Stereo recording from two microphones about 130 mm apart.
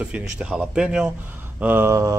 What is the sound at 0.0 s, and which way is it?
A man's voice, 10° right (ahead or behind).